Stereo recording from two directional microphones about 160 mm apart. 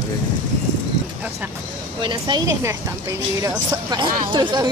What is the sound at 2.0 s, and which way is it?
Speech, 30° right (ahead or behind).